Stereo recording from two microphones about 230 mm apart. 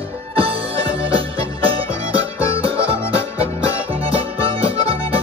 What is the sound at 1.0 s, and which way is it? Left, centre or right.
Music, right.